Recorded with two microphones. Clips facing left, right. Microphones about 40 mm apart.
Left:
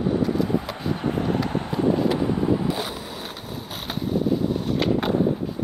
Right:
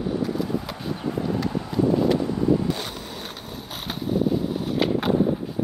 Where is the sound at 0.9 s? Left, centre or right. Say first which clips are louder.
Left 2 dB; left.